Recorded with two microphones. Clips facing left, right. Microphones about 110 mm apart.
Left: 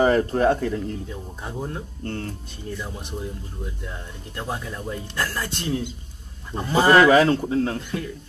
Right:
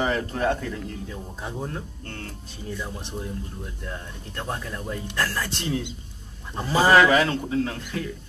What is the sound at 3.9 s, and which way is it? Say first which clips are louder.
Speech: right 1 dB; 5° left (ahead or behind).